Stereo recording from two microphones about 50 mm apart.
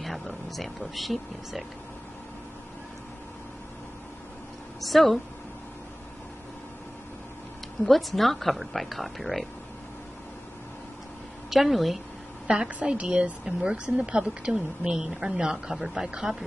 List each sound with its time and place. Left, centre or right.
0.0 s speech: centre
4.7 s speech: centre
7.8 s speech: centre
11.5 s speech: centre
12.8 s a woman's voice: right